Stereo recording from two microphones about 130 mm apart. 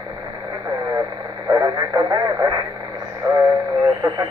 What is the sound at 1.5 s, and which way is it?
Radio, 30° right (ahead or behind).